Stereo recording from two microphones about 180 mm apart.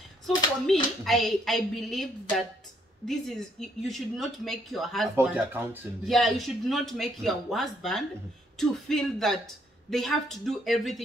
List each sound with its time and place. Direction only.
0.7 s speech: centre (ahead or behind)
5.3 s speech: 10° right (ahead or behind)
6.0 s speech: centre (ahead or behind)